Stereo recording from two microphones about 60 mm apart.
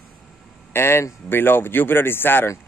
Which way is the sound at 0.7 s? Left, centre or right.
Left.